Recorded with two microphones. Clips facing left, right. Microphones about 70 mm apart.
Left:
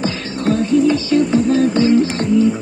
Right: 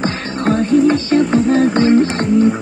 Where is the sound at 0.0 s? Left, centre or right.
Right.